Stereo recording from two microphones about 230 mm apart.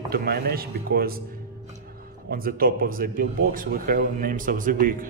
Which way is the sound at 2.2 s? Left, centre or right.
Right.